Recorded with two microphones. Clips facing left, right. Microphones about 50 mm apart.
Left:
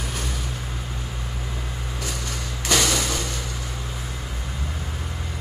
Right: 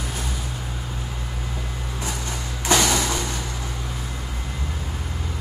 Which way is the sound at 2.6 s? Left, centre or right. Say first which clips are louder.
Right 2 dB; right.